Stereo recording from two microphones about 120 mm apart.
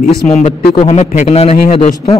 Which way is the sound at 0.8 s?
65° left (ahead or behind).